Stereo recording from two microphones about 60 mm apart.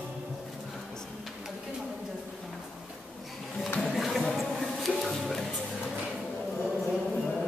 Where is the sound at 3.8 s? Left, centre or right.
Centre.